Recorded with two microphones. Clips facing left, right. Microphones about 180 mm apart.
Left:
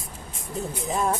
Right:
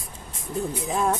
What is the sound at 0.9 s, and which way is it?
Speech, centre (ahead or behind).